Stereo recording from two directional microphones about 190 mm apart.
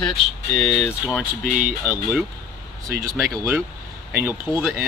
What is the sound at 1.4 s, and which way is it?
Speech, 45° right (ahead or behind).